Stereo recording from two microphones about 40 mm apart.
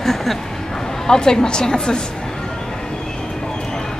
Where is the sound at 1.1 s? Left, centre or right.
Centre.